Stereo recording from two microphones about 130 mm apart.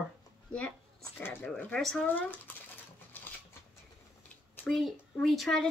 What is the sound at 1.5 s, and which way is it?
Speech, 5° left (ahead or behind).